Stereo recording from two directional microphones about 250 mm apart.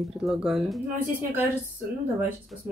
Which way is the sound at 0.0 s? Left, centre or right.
Centre.